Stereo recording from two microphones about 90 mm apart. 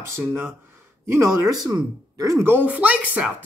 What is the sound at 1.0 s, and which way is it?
Speech, 30° right (ahead or behind).